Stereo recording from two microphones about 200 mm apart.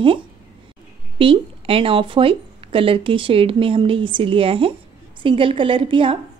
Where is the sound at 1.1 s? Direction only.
25° right (ahead or behind).